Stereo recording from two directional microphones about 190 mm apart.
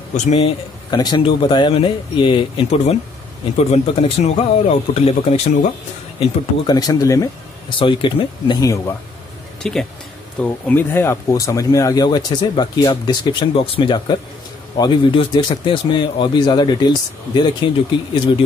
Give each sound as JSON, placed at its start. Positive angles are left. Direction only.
{"t": 0.1, "sound": "speech", "side_deg": 35}
{"t": 0.8, "sound": "speech", "side_deg": 20}
{"t": 6.1, "sound": "speech", "side_deg": 20}
{"t": 9.6, "sound": "speech", "side_deg": 5}